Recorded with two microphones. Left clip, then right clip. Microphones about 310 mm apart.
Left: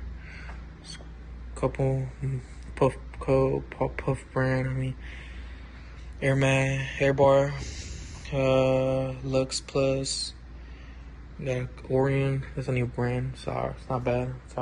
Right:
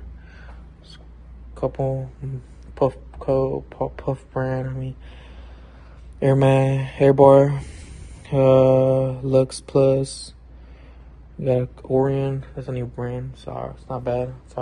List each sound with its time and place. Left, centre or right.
0.3 s a sound: centre
1.5 s speech: centre
11.4 s speech: centre